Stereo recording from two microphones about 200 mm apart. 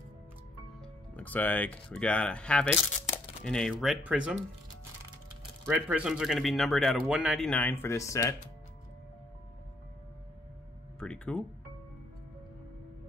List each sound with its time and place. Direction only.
1.1 s coin: 10° left (ahead or behind)
5.7 s coin: 5° right (ahead or behind); by 8.4 s 15° left (ahead or behind)
11.0 s a sound: 5° left (ahead or behind)